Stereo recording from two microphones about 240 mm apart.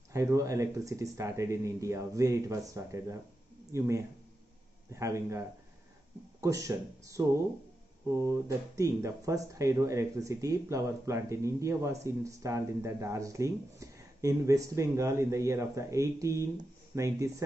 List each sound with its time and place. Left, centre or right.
0.1 s speech: centre
6.4 s speech: centre